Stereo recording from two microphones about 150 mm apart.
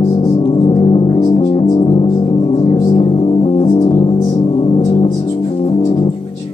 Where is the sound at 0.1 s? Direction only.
40° left (ahead or behind).